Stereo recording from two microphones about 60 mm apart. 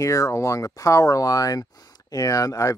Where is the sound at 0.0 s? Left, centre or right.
Left.